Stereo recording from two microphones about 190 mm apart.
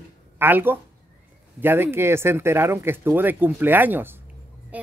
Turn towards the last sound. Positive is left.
turn(degrees=-10)  # may be behind; listen again after turning